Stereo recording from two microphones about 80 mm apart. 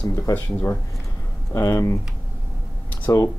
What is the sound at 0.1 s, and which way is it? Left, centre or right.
Speech, left.